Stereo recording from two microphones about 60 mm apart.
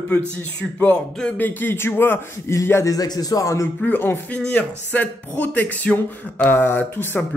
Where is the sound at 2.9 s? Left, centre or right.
Left.